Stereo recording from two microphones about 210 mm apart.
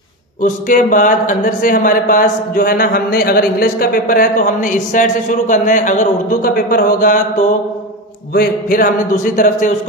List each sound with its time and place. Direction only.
0.4 s speech: 40° left (ahead or behind)